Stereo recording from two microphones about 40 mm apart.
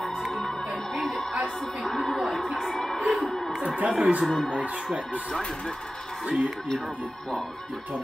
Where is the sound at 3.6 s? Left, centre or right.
Right.